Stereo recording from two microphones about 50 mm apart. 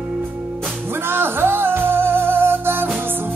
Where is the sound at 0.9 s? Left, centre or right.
Right.